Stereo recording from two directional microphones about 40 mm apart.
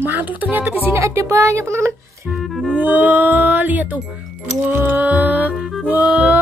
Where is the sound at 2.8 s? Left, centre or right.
Right.